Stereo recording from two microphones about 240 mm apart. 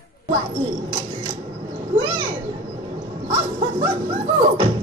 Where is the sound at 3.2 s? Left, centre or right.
Right.